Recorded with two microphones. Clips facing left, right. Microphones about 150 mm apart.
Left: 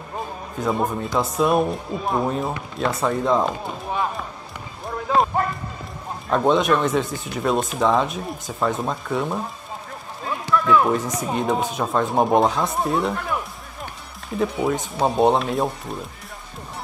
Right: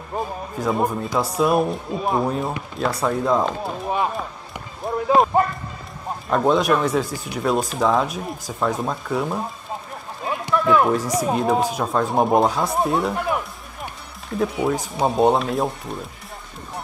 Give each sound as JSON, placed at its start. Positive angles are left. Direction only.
{"t": 0.6, "sound": "speech", "side_deg": 0}
{"t": 4.8, "sound": "run", "side_deg": -25}
{"t": 6.3, "sound": "speech", "side_deg": 0}
{"t": 10.2, "sound": "run", "side_deg": -15}
{"t": 11.1, "sound": "speech", "side_deg": 0}
{"t": 14.4, "sound": "speech", "side_deg": 0}